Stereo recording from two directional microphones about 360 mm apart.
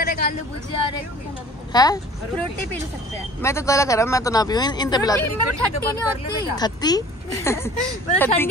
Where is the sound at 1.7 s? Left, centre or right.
Centre.